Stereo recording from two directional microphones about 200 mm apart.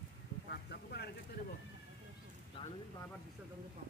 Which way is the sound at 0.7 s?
55° left (ahead or behind).